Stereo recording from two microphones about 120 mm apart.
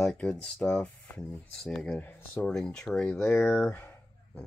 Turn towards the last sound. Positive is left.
turn(degrees=5)  # may be behind; listen again after turning